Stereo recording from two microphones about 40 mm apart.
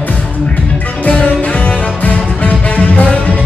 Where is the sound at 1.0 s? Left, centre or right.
Left.